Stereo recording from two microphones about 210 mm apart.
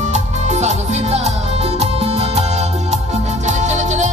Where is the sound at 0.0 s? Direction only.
35° right (ahead or behind).